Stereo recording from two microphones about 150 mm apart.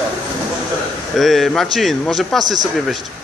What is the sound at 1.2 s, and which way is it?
A man's voice, centre (ahead or behind).